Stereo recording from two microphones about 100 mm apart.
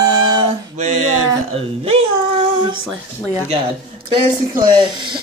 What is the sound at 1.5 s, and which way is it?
Speech, 80° right.